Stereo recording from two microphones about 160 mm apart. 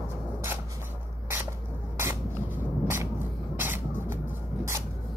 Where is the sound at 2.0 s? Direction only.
15° right (ahead or behind).